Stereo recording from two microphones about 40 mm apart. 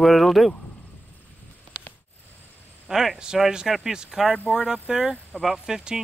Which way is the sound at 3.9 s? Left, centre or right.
Centre.